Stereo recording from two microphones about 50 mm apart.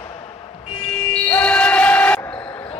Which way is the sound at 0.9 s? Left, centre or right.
Left.